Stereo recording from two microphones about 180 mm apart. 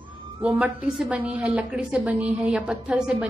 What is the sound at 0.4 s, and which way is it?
A woman's voice, 5° right (ahead or behind).